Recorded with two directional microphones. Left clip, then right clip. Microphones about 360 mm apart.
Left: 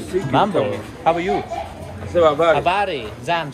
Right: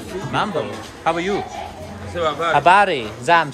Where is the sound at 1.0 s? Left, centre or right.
Centre.